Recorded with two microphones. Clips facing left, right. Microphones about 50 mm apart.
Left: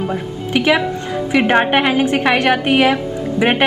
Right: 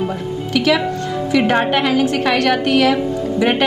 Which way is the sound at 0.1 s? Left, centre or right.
Left.